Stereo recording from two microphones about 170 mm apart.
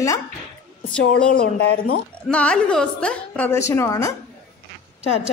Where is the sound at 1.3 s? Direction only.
55° left (ahead or behind).